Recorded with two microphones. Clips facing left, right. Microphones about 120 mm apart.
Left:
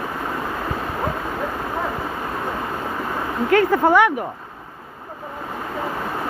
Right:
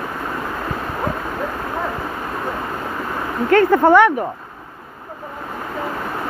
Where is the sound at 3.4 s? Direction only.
10° left (ahead or behind).